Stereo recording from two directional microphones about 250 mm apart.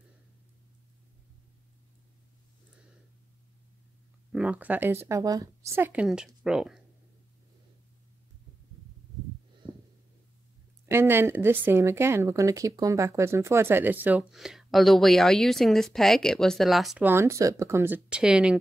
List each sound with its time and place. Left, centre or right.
4.3 s speech: centre
9.6 s heart sounds: centre
10.9 s speech: centre